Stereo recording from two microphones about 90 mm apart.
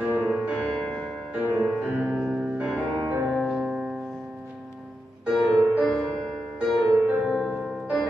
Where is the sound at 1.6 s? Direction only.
15° right (ahead or behind).